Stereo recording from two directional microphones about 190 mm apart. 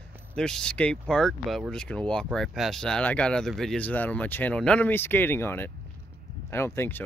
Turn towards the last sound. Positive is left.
turn(degrees=10)  # may be behind; listen again after turning